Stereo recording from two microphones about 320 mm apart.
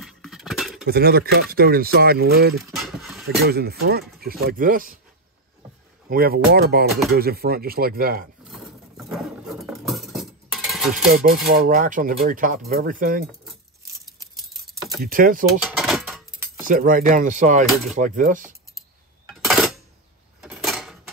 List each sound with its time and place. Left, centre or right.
0.0 s a sound: centre
0.8 s speech: right
2.6 s dog: centre
3.3 s speech: right
6.0 s speech: right
8.5 s a sound: centre
11.1 s speech: right
15.0 s speech: right
15.6 s keys jangling: centre
16.6 s speech: right
19.2 s a sound: centre